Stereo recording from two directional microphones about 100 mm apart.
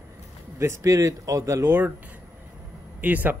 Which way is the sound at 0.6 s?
30° right (ahead or behind).